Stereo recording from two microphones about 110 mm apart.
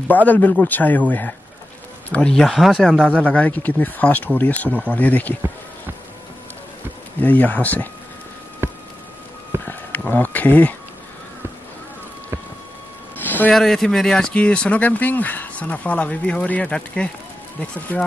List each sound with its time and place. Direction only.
0.1 s speech: 15° left (ahead or behind)
2.9 s speech: 10° right (ahead or behind)
3.3 s speech: 15° left (ahead or behind)
7.2 s speech: 15° left (ahead or behind)
9.7 s a sound: 15° left (ahead or behind)
13.2 s a sound: 15° left (ahead or behind)
13.5 s speech: 5° left (ahead or behind)